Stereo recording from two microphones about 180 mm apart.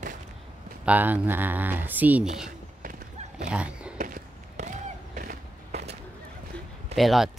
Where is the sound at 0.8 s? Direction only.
10° right (ahead or behind).